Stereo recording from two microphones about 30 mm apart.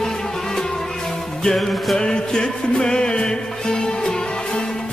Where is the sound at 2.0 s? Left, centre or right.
Left.